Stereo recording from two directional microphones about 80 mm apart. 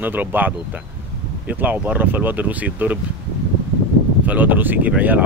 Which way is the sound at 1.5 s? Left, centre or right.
Right.